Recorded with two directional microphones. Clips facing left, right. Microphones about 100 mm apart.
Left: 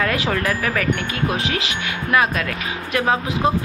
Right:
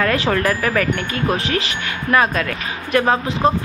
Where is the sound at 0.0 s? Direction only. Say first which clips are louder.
Right 3 dB; 5° left (ahead or behind).